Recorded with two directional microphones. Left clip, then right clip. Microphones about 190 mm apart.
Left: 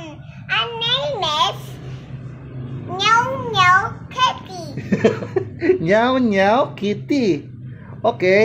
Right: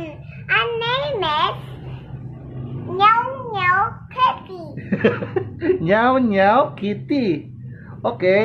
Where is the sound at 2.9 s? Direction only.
Centre (ahead or behind).